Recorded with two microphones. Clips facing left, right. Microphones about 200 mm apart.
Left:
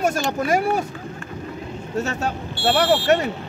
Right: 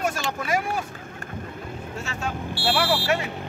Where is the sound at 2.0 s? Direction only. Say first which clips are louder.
Left 8 dB; 40° left (ahead or behind).